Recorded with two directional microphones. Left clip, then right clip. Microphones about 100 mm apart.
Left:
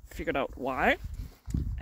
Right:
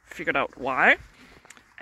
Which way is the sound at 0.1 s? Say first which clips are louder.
Right 5 dB; 25° left (ahead or behind).